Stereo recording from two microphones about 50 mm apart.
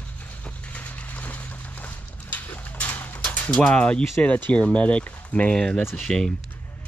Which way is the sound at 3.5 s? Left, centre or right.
Centre.